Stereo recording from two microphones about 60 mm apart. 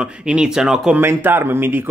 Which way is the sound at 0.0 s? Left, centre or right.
Centre.